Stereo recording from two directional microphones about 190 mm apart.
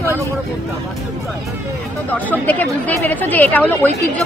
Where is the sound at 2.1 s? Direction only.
10° left (ahead or behind).